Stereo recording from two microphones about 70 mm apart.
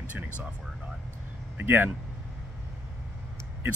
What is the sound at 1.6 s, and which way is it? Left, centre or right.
Speech, right.